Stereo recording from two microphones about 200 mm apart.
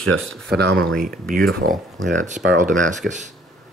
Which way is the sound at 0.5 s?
55° right (ahead or behind).